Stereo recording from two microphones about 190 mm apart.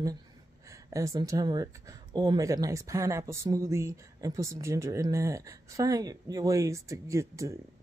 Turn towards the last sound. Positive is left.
turn(degrees=-15)  # may be behind; listen again after turning